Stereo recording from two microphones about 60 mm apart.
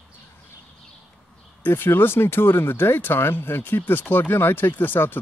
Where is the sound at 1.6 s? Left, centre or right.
Left.